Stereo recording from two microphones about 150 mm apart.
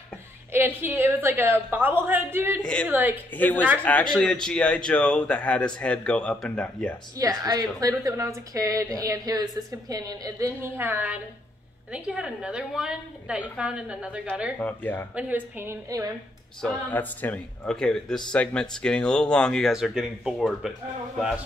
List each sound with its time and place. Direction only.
0.5 s a woman's voice: 15° right (ahead or behind)
2.6 s a man's voice: 5° left (ahead or behind)
2.9 s a woman's voice: 15° right (ahead or behind)
3.3 s a man's voice: 10° left (ahead or behind)
7.2 s a woman's voice: 25° right (ahead or behind); by 14.2 s 10° right (ahead or behind)
14.6 s a man's voice: 10° left (ahead or behind)
15.1 s a woman's voice: 10° right (ahead or behind)
16.6 s speech: 10° left (ahead or behind)